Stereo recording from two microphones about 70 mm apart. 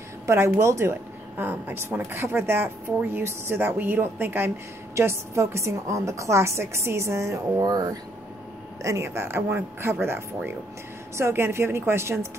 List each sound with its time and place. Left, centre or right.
0.3 s speech: right
1.4 s speech: right
4.9 s a woman's voice: right
7.6 s speech: right
8.8 s speech: right